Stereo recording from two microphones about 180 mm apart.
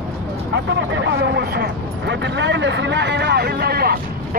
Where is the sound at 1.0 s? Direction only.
70° right (ahead or behind).